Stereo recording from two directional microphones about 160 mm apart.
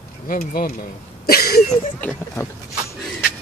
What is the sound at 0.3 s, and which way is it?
Speech, 65° left (ahead or behind).